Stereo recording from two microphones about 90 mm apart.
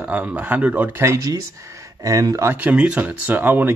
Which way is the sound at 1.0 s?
35° right (ahead or behind).